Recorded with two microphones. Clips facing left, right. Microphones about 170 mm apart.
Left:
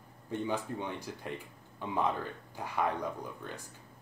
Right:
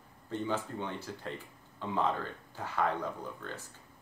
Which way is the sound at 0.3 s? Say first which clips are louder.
Even; 15° left (ahead or behind).